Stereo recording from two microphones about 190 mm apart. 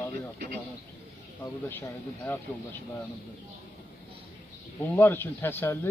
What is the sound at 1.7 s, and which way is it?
Speech, 10° left (ahead or behind).